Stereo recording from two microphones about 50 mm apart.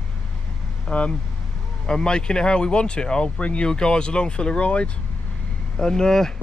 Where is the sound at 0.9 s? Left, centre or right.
Left.